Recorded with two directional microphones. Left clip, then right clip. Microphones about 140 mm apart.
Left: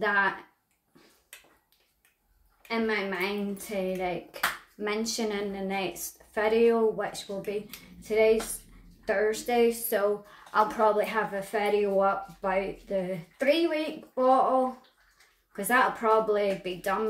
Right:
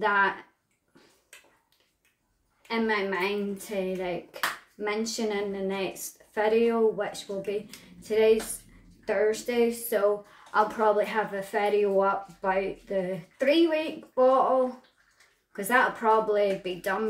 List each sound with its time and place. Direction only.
0.0 s speech: 10° right (ahead or behind)
2.7 s a woman's voice: 15° right (ahead or behind)